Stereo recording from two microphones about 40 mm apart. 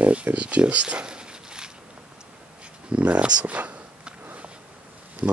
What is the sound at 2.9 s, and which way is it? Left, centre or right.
Speech, right.